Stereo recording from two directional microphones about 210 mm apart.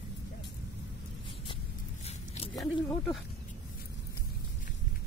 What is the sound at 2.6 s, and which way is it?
Speech, 15° left (ahead or behind).